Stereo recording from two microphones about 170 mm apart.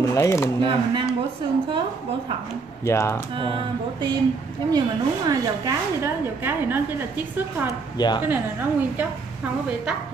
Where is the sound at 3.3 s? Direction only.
30° right (ahead or behind).